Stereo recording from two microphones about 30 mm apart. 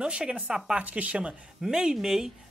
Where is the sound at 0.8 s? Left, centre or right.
Right.